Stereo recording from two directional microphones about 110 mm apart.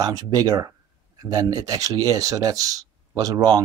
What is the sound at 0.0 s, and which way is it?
Speech, 35° right (ahead or behind).